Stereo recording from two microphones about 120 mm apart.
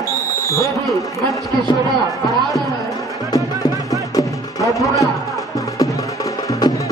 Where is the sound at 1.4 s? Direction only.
25° left (ahead or behind).